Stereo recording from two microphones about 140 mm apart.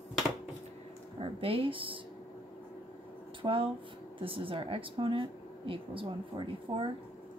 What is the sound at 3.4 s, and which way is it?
Speech, 40° right (ahead or behind).